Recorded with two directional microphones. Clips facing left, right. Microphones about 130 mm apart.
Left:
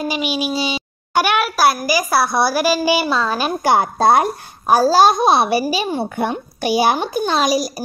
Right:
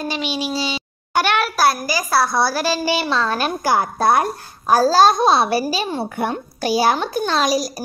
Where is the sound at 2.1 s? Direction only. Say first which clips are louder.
Even; 15° left (ahead or behind).